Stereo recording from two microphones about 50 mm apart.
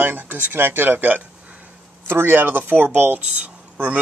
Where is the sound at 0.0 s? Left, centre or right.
Right.